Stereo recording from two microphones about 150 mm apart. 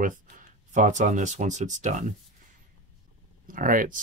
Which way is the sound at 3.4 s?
65° right (ahead or behind).